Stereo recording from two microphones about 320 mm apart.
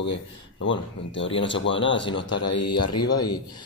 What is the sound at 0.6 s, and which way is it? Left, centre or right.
Speech, left.